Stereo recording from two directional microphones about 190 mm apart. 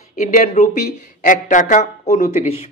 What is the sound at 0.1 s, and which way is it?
A man's voice, 40° left (ahead or behind).